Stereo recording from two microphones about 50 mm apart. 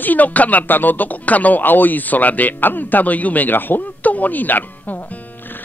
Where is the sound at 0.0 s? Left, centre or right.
Left.